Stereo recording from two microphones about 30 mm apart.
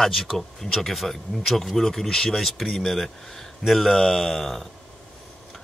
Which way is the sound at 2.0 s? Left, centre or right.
Centre.